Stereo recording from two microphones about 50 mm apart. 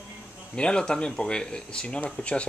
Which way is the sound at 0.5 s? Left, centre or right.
Centre.